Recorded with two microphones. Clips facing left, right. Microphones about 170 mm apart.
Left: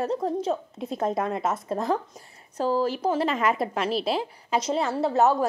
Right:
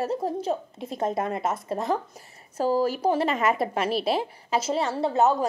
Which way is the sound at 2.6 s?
45° right (ahead or behind).